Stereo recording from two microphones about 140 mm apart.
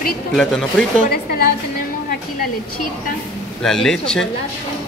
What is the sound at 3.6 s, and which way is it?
Speech, 5° left (ahead or behind).